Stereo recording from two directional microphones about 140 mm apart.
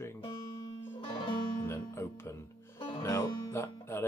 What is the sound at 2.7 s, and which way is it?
Music, 40° left (ahead or behind).